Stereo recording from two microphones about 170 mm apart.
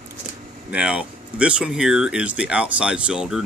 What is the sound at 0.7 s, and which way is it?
Speech, 5° right (ahead or behind).